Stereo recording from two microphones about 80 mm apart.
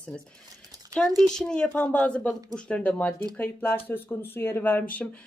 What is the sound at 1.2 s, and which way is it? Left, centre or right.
Speech, centre.